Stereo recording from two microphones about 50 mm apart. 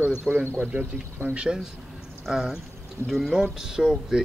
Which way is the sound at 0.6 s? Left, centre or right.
Right.